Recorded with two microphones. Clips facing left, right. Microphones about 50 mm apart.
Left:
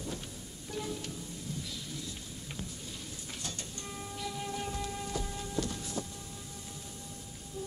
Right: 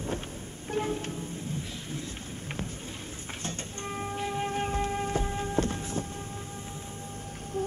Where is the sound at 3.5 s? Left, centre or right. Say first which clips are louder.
Right 8 dB; right.